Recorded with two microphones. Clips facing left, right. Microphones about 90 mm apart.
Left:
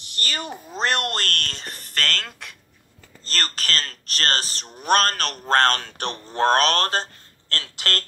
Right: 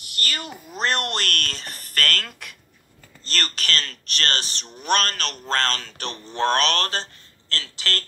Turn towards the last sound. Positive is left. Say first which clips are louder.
# left 1 dB
turn(degrees=50)  # may be behind; listen again after turning